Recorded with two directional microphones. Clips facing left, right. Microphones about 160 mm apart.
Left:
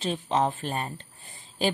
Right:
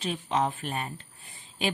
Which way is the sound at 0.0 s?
30° left (ahead or behind).